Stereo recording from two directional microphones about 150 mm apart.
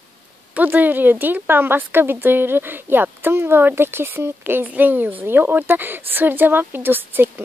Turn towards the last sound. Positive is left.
turn(degrees=-15)  # may be behind; listen again after turning